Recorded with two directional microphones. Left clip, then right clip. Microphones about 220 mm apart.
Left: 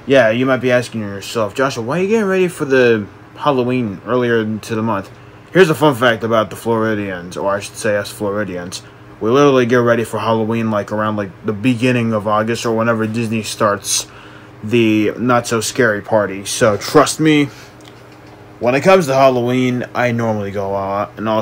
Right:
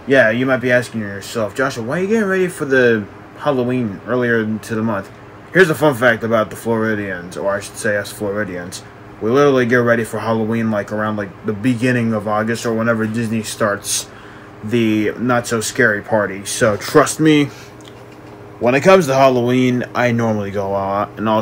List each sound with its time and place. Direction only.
0.1 s speech: centre (ahead or behind)
11.7 s speech: 15° right (ahead or behind)
12.1 s speech: centre (ahead or behind)
18.6 s speech: centre (ahead or behind)